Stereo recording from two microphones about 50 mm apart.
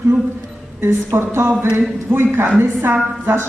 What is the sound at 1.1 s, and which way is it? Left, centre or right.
A man's voice, right.